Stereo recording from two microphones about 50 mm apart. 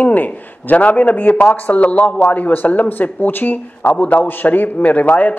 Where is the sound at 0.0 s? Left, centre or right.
Left.